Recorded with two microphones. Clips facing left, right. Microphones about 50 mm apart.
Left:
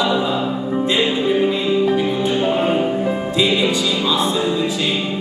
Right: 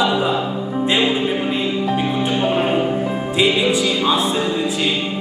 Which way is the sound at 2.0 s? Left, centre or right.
Right.